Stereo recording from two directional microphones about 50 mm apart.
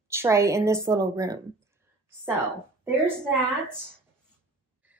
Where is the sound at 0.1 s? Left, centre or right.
Right.